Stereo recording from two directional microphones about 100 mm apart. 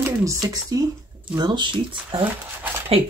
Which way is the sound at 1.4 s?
50° right (ahead or behind).